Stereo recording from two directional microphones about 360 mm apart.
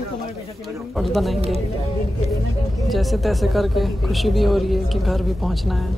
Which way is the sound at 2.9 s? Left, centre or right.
Centre.